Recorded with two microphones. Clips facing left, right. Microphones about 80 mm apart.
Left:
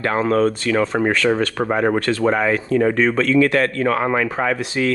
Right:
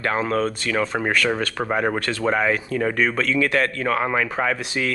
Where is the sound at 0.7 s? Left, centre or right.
Left.